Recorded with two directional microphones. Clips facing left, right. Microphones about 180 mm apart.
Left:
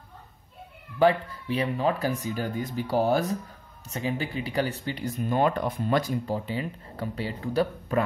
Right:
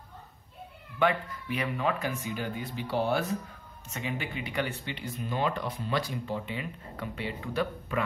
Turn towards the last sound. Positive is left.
turn(degrees=35)  # may be behind; listen again after turning